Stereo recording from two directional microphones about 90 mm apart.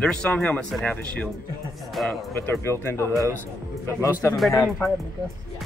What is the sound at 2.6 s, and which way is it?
Speech, 30° left (ahead or behind).